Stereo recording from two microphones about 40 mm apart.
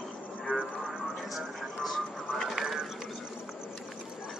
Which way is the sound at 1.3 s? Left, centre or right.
Centre.